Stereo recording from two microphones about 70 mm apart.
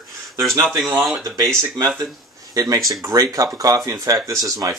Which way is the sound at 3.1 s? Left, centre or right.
Right.